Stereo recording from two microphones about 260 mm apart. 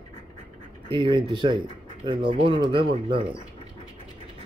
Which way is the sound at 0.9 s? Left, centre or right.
Centre.